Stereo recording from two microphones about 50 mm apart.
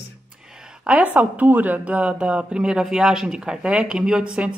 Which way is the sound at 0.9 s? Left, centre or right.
Right.